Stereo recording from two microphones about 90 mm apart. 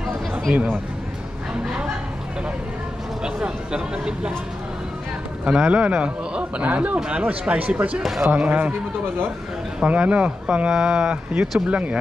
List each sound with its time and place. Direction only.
0.3 s speech: 20° right (ahead or behind)
3.3 s a man's voice: 10° right (ahead or behind)
5.4 s a man's voice: 10° right (ahead or behind)
8.0 s speech: centre (ahead or behind)
8.3 s a man's voice: 15° right (ahead or behind)
9.8 s a man's voice: 15° right (ahead or behind)